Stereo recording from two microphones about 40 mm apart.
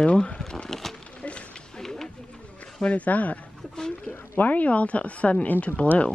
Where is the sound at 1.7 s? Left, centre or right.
Centre.